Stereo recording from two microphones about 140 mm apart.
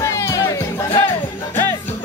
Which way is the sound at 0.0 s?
20° left (ahead or behind).